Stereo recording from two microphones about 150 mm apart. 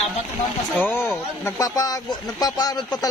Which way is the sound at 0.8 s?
15° left (ahead or behind).